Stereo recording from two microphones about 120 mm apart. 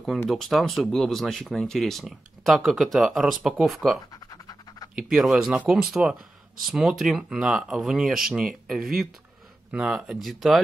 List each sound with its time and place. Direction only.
0.3 s speech: centre (ahead or behind)
4.1 s scratch: 35° left (ahead or behind)
4.9 s speech: 5° right (ahead or behind)